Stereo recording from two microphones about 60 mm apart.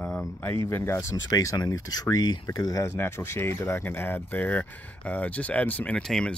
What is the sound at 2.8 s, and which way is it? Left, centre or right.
Speech, left.